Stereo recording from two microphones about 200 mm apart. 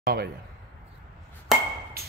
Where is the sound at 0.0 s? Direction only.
50° right (ahead or behind).